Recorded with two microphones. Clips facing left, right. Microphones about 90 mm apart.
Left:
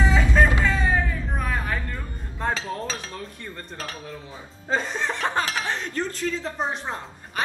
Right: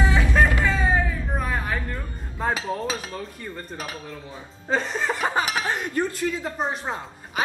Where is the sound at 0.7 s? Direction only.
10° right (ahead or behind).